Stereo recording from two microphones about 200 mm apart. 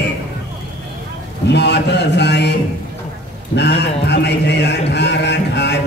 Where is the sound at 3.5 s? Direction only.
60° left (ahead or behind).